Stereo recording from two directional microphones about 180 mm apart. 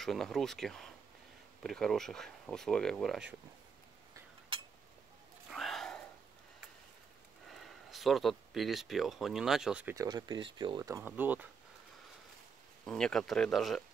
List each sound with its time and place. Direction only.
0.0 s speech: centre (ahead or behind)
5.5 s a sound: centre (ahead or behind)
7.4 s speech: centre (ahead or behind)
9.9 s speech: 20° right (ahead or behind)
12.8 s speech: 5° left (ahead or behind)